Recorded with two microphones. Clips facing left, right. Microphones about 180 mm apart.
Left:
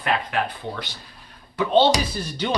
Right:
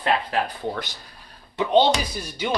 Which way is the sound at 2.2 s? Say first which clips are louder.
Left 1 dB; 10° right (ahead or behind).